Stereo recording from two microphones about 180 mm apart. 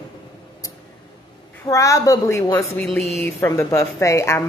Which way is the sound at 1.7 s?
20° left (ahead or behind).